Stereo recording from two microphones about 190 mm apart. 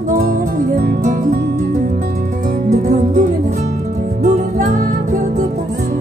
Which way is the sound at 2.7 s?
40° right (ahead or behind).